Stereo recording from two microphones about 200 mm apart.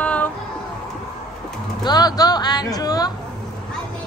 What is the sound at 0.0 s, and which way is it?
Music, 5° left (ahead or behind).